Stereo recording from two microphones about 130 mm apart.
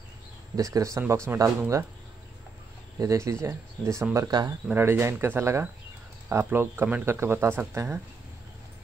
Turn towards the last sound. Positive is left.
turn(degrees=-20)  # may be behind; listen again after turning